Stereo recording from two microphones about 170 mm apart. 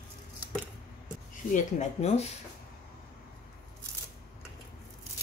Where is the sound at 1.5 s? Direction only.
40° left (ahead or behind).